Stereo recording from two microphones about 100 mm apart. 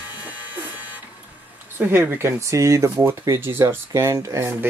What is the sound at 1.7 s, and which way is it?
Speech, 20° right (ahead or behind).